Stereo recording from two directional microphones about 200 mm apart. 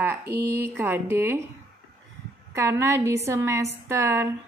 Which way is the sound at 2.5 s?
15° right (ahead or behind).